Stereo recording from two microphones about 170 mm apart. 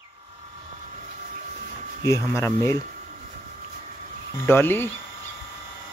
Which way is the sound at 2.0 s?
15° left (ahead or behind).